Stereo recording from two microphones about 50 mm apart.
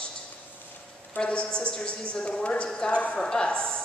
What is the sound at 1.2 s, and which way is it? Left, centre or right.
A woman's voice, left.